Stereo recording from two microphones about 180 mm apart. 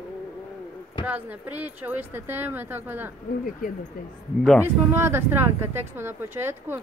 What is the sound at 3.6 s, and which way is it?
Speech, 50° left (ahead or behind).